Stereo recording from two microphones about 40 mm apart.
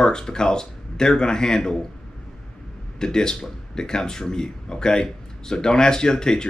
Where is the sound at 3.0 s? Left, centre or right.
Centre.